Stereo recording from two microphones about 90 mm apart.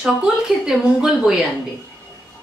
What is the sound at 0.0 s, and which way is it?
A woman's voice, 5° right (ahead or behind).